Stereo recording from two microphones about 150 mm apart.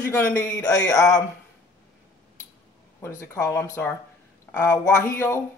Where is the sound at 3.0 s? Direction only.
20° left (ahead or behind).